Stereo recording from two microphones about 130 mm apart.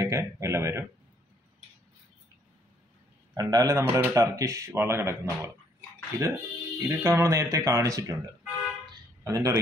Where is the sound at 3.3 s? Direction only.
30° right (ahead or behind).